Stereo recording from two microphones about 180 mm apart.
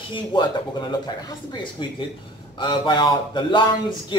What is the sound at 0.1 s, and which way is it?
A man's voice, 25° left (ahead or behind).